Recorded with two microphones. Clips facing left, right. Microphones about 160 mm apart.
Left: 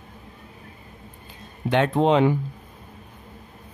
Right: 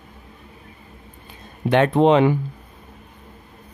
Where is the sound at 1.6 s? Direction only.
60° right (ahead or behind).